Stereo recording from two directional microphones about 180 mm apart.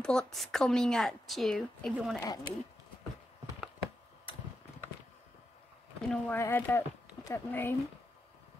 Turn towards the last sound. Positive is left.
turn(degrees=15)  # may be behind; listen again after turning